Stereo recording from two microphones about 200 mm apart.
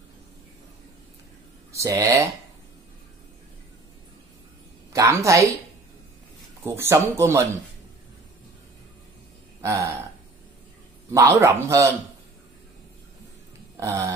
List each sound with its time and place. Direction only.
1.7 s speech: 15° right (ahead or behind)
4.9 s a woman's voice: 15° right (ahead or behind)
6.6 s speech: 15° right (ahead or behind)
9.6 s a sound: 15° right (ahead or behind)
11.1 s speech: 15° right (ahead or behind)
13.7 s a sound: 15° right (ahead or behind)